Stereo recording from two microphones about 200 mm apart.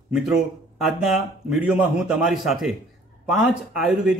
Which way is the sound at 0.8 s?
Centre (ahead or behind).